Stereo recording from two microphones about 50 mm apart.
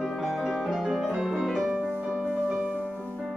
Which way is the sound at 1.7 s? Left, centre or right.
Right.